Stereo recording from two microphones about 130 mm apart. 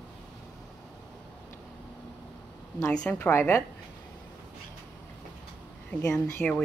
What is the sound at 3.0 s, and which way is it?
Speech, 15° left (ahead or behind).